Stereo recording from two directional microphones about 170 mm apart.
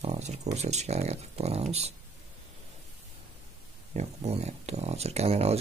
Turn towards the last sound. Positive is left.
turn(degrees=-40)  # may be behind; listen again after turning